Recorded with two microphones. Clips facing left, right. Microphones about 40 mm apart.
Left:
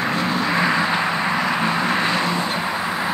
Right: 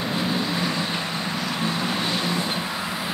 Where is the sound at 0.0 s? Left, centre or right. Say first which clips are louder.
Left 4 dB; left.